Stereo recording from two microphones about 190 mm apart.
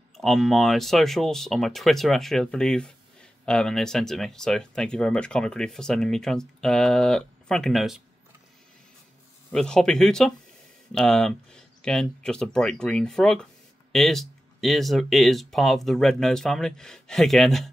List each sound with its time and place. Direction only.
0.2 s speech: centre (ahead or behind)
9.5 s speech: 5° left (ahead or behind)